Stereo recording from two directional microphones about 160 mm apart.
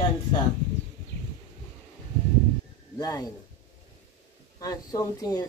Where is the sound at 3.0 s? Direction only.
25° left (ahead or behind).